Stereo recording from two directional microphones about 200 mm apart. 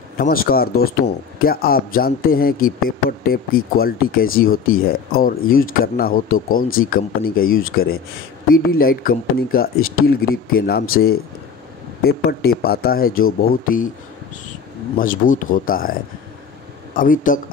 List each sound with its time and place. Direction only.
0.2 s speech: 45° left (ahead or behind)
15.0 s speech: 40° left (ahead or behind)